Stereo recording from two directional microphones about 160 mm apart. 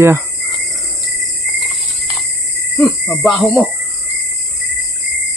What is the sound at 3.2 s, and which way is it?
Speech, centre (ahead or behind).